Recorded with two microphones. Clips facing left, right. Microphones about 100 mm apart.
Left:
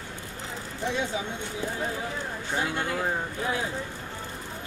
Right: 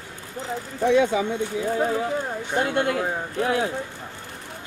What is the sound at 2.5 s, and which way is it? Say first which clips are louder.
Speech: right 6 dB; 60° right (ahead or behind).